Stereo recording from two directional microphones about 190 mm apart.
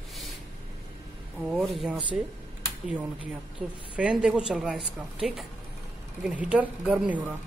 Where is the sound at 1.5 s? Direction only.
Centre (ahead or behind).